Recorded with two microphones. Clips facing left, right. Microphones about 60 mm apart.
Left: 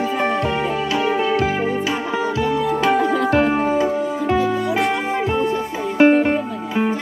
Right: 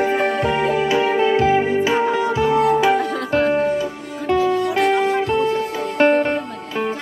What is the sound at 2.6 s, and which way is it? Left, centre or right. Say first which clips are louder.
Music: right 2 dB; centre.